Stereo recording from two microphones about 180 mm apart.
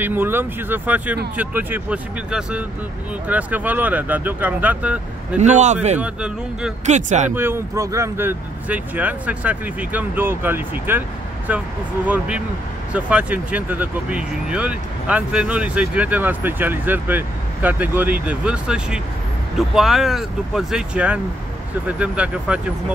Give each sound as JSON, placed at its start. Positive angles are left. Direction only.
{"t": 0.0, "sound": "speech", "side_deg": -10}
{"t": 5.4, "sound": "a man's voice", "side_deg": -40}
{"t": 5.9, "sound": "speech", "side_deg": -5}
{"t": 6.9, "sound": "speech", "side_deg": -40}
{"t": 7.3, "sound": "speech", "side_deg": -15}